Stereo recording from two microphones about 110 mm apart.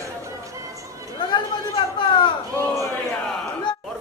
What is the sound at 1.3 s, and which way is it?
Speech, 45° left (ahead or behind).